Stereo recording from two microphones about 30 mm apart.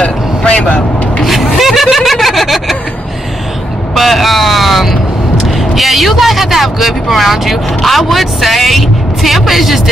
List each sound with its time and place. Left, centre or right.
0.0 s vehicle: left
1.2 s a sound: centre
2.0 s vehicle: centre
3.9 s vehicle: centre